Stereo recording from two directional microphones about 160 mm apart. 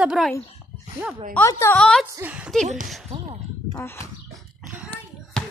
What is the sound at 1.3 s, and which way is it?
Speech, 15° left (ahead or behind).